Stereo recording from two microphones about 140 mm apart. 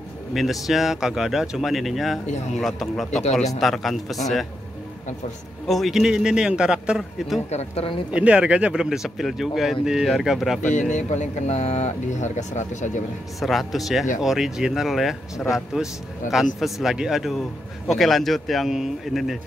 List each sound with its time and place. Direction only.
0.3 s speech: centre (ahead or behind)
3.1 s speech: 50° left (ahead or behind)
3.5 s speech: centre (ahead or behind)
5.7 s speech: centre (ahead or behind)
7.5 s speech: 45° left (ahead or behind)
8.1 s speech: 10° right (ahead or behind)
10.7 s speech: 60° left (ahead or behind)
13.4 s speech: centre (ahead or behind)